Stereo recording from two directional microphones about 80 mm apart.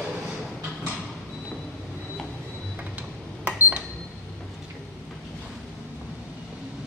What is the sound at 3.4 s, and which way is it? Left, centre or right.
Cash register, centre.